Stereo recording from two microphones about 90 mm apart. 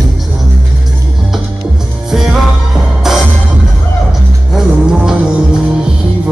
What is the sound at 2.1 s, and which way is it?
Music, 5° right (ahead or behind).